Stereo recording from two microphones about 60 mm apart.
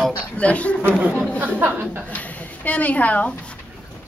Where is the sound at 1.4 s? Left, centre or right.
Right.